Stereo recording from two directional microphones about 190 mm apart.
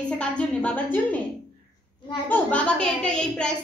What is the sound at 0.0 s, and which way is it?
A woman's voice, 5° left (ahead or behind).